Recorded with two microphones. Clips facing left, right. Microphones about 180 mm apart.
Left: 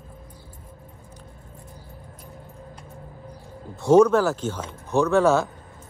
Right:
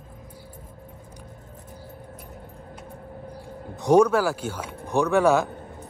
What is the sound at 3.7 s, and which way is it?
Speech, 15° right (ahead or behind).